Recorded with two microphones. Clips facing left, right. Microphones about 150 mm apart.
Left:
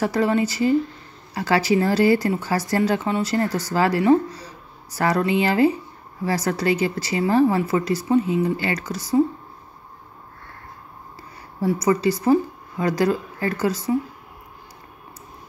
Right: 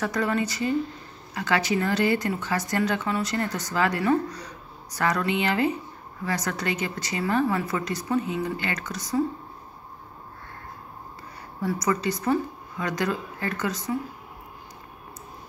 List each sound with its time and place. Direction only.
0.0 s speech: 30° left (ahead or behind)
11.6 s speech: 30° left (ahead or behind)